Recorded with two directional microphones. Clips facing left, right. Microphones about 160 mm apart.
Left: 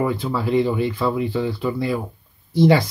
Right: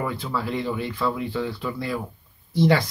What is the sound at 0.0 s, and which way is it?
Speech, 15° left (ahead or behind).